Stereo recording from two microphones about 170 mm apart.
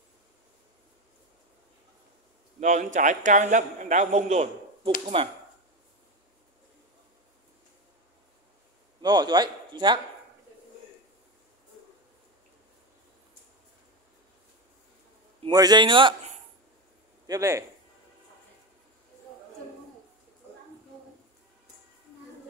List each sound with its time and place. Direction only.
2.6 s a man's voice: 45° right (ahead or behind)
5.2 s speech: 30° right (ahead or behind)
9.0 s a man's voice: 25° right (ahead or behind)
15.4 s a man's voice: 25° right (ahead or behind)
17.3 s speech: 20° right (ahead or behind)